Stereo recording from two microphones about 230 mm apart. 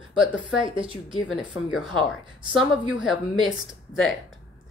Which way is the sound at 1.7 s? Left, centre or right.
Centre.